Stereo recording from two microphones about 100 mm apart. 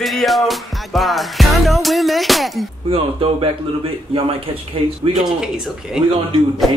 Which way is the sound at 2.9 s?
70° right (ahead or behind).